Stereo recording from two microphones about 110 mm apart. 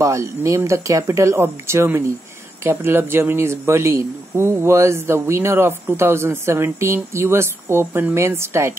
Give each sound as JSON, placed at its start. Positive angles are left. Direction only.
{"t": 0.0, "sound": "a man's voice", "side_deg": -25}